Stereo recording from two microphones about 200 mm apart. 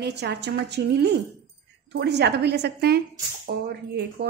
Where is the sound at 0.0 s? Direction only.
55° right (ahead or behind).